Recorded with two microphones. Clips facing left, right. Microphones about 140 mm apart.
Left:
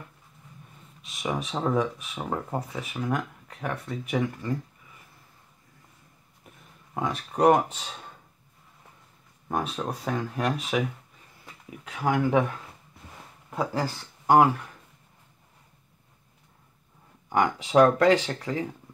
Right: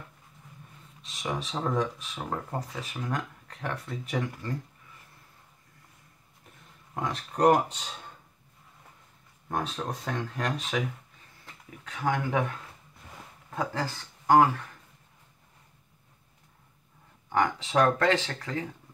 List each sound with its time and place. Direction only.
1.2 s speech: 5° left (ahead or behind)
7.0 s speech: 5° left (ahead or behind)
9.5 s speech: 5° left (ahead or behind)
12.0 s speech: 25° left (ahead or behind)
13.5 s speech: 15° left (ahead or behind)
17.3 s speech: 15° left (ahead or behind)